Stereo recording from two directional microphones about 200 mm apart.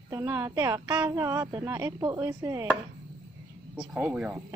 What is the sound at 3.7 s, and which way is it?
Speech, 5° right (ahead or behind).